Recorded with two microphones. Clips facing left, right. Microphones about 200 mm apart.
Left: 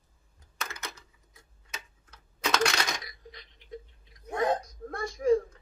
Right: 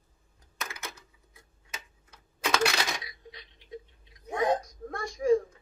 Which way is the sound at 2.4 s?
5° right (ahead or behind).